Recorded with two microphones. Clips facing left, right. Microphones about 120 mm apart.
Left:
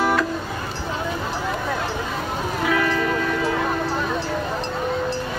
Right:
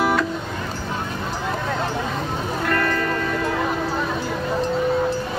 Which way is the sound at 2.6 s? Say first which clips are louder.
Left 1 dB; centre (ahead or behind).